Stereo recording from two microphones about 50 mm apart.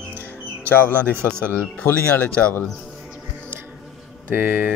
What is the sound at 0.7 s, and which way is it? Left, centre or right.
Speech, left.